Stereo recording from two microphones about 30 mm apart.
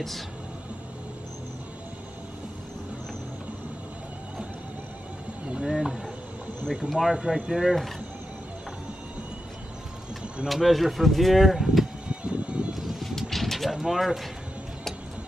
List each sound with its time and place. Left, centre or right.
5.7 s speech: centre
6.9 s speech: centre
10.6 s speech: centre
12.1 s vehicle: right
12.7 s music: centre
13.3 s vehicle: centre
13.7 s speech: centre